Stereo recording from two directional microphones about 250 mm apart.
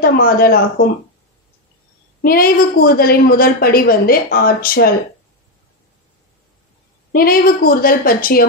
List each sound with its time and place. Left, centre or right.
0.0 s a woman's voice: left
2.2 s a woman's voice: left
7.1 s a woman's voice: left